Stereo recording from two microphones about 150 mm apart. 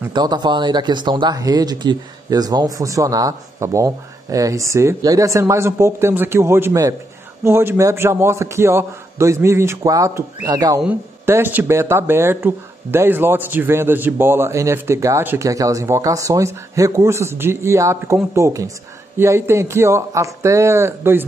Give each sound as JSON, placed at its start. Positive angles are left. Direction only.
{"t": 0.1, "sound": "speech", "side_deg": -30}
{"t": 10.8, "sound": "speech", "side_deg": -15}